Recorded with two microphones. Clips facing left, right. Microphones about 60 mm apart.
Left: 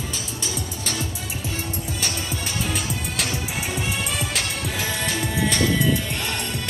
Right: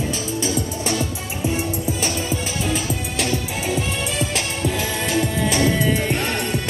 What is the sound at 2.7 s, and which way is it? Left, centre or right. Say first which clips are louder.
Music: right 4 dB; centre.